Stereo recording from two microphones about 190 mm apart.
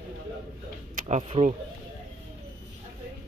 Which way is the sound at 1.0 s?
35° right (ahead or behind).